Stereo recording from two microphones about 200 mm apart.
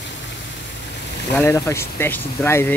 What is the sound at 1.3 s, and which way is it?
Speech, 15° left (ahead or behind).